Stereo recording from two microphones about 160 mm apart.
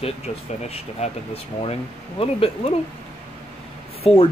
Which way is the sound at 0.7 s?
40° left (ahead or behind).